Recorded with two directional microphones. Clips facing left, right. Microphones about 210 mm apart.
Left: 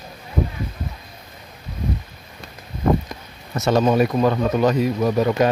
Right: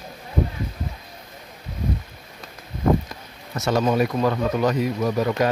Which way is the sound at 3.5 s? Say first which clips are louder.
Left 4 dB; 20° left (ahead or behind).